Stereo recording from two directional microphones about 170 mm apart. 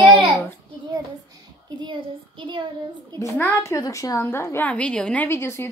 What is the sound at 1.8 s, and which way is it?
Child singing, 30° right (ahead or behind).